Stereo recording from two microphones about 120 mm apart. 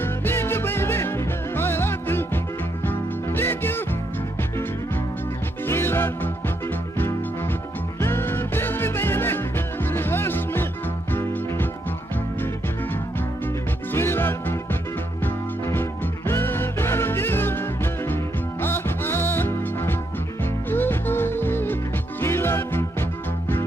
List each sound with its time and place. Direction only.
0.0 s music: 20° left (ahead or behind)
5.7 s music: 20° left (ahead or behind)
8.0 s music: 20° left (ahead or behind)
13.9 s music: 20° left (ahead or behind)